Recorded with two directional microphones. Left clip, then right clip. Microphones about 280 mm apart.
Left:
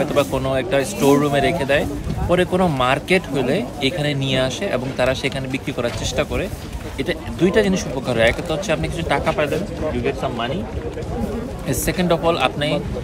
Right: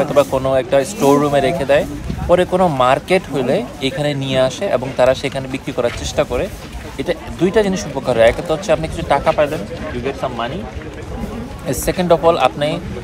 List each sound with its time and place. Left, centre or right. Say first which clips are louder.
0.0 s a man's voice: right 5 dB; centre
11.6 s a man's voice: right 4 dB; centre